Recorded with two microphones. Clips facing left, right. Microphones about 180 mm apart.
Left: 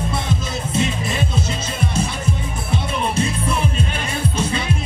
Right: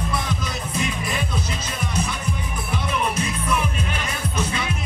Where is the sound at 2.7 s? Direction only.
30° left (ahead or behind).